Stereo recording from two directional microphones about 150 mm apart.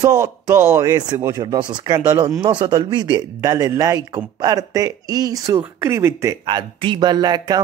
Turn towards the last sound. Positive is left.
turn(degrees=-25)  # may be behind; listen again after turning